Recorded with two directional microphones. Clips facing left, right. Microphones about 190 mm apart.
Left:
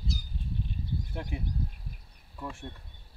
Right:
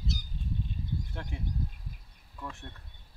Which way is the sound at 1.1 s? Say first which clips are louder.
Left 2 dB; 15° left (ahead or behind).